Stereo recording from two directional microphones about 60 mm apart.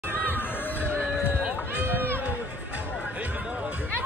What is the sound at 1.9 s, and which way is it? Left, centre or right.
Run, right.